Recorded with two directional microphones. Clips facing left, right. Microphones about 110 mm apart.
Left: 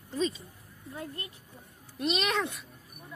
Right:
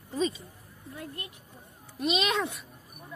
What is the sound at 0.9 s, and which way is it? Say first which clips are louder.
Speech: left 1 dB; 30° left (ahead or behind).